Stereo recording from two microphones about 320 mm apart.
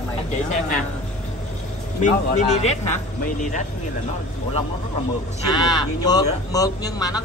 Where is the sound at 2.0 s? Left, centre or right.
Left.